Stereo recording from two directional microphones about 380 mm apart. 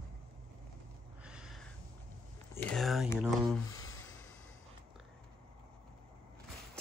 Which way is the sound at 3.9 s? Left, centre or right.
Left.